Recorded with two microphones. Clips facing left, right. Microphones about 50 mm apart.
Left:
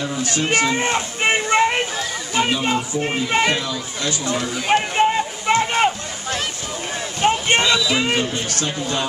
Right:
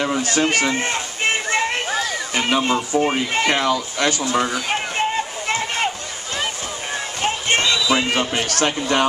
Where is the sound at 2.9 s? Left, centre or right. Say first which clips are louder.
Right 1 dB; right.